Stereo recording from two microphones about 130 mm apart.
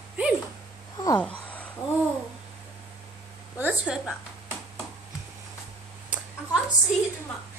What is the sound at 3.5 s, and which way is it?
Speech, 10° right (ahead or behind).